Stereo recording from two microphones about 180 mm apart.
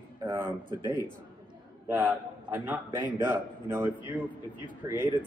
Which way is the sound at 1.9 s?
10° right (ahead or behind).